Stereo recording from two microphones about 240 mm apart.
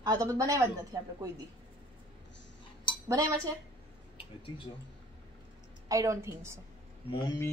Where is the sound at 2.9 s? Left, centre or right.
Centre.